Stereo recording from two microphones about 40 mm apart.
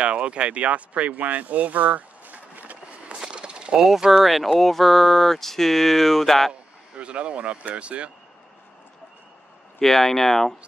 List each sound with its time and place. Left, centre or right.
0.0 s speech: right
3.2 s a sound: right
3.8 s speech: centre
7.0 s speech: right
9.8 s speech: centre